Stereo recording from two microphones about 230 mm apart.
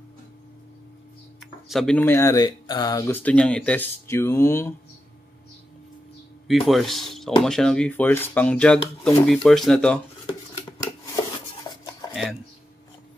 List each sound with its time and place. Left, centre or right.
1.7 s speech: centre
6.4 s speech: centre
11.6 s a sound: centre